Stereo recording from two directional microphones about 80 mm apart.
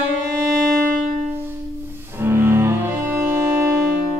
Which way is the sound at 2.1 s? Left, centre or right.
Right.